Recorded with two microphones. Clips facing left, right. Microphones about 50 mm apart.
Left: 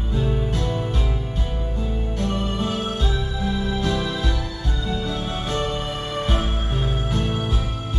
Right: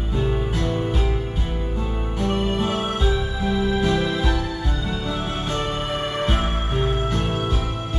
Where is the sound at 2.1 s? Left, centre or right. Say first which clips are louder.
Right 4 dB; right.